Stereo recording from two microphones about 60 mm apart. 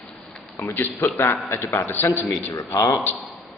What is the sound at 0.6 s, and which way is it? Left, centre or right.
A man's voice, left.